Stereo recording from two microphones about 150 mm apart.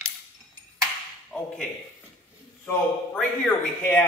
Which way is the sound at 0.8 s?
Centre (ahead or behind).